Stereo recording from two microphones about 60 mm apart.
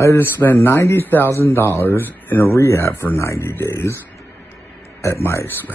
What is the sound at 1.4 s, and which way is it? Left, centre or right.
Speech, left.